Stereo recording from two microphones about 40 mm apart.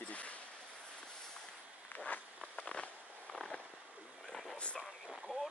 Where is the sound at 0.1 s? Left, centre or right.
Left.